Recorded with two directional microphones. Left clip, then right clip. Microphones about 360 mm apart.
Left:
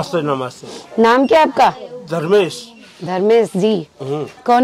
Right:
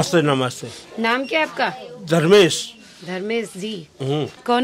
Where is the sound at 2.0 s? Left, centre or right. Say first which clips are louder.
Right 1 dB; right.